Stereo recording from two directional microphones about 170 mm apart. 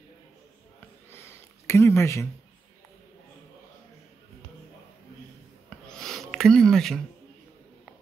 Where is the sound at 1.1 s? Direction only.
15° left (ahead or behind).